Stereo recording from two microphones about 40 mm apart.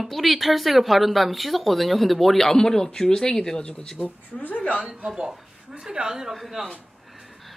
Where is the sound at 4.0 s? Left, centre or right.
Left.